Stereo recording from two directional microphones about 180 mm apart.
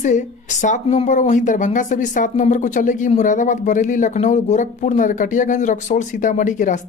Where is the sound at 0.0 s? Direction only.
40° left (ahead or behind).